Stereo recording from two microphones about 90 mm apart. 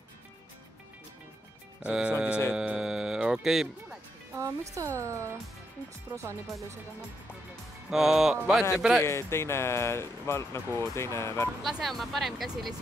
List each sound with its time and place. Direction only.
1.8 s speech: 10° right (ahead or behind)
2.5 s music: 10° right (ahead or behind)
4.4 s speech: 35° right (ahead or behind)
7.9 s speech: 5° right (ahead or behind)
9.0 s speech: 30° left (ahead or behind)
11.6 s speech: centre (ahead or behind)